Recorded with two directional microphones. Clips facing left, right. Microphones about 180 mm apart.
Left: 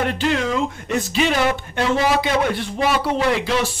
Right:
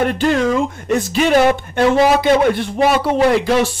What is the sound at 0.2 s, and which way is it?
A man's voice, 50° right (ahead or behind).